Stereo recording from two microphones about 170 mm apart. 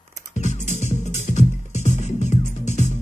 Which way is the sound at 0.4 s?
45° left (ahead or behind).